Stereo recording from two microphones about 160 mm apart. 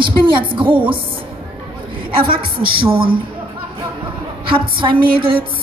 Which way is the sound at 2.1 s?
65° right (ahead or behind).